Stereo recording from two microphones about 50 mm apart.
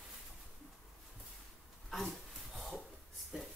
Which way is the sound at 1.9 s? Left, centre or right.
Centre.